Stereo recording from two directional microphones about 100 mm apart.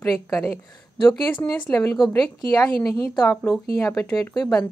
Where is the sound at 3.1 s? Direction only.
10° left (ahead or behind).